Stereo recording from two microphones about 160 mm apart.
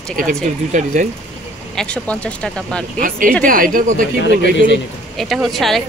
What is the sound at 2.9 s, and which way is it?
Speech, 60° right (ahead or behind).